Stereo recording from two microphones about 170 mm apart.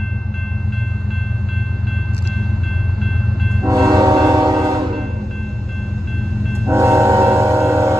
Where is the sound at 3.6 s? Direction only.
20° right (ahead or behind).